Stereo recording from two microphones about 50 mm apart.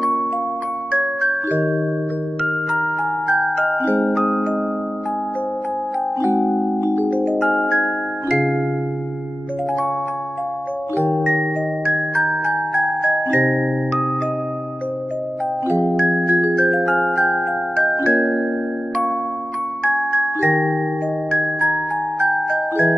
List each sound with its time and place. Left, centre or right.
1.5 s music: right
6.8 s music: right
12.4 s glockenspiel: right
13.0 s music: right
15.8 s music: right
20.3 s music: right
22.3 s glockenspiel: right